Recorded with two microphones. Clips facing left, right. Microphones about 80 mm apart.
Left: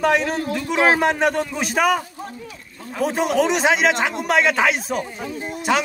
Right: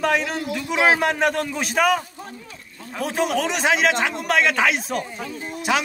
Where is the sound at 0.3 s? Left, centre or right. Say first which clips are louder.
Left 3 dB; left.